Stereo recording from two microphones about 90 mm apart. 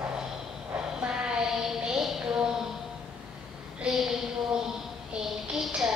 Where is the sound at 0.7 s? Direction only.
10° right (ahead or behind).